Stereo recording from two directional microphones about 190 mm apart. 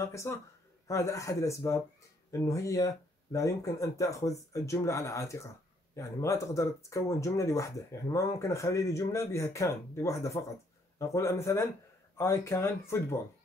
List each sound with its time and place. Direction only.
0.0 s speech: 15° left (ahead or behind)